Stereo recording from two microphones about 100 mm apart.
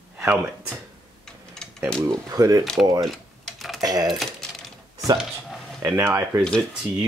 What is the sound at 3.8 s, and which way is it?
Typing, 40° right (ahead or behind).